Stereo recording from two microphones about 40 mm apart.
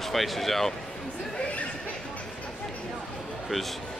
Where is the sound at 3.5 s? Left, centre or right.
Centre.